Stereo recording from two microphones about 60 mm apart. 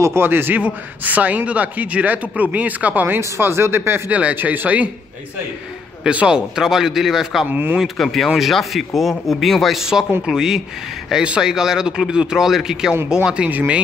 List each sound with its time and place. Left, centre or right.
0.0 s a man's voice: right
0.6 s a man's voice: right
3.2 s speech: right
4.1 s a man's voice: right
6.0 s speech: centre
7.4 s a man's voice: right
7.8 s speech: centre
13.5 s a man's voice: right